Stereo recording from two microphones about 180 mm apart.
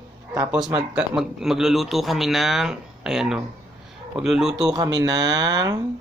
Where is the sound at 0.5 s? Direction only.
5° right (ahead or behind).